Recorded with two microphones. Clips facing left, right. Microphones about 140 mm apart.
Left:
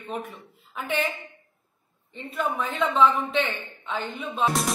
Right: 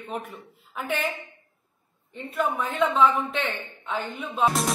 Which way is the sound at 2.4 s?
5° right (ahead or behind).